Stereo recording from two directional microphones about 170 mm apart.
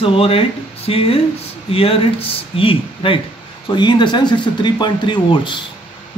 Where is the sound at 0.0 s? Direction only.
30° left (ahead or behind).